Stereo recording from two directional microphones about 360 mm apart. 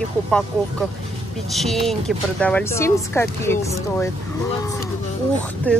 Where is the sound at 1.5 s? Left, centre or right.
Centre.